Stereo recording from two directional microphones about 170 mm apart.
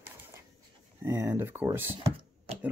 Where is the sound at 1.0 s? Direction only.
15° right (ahead or behind).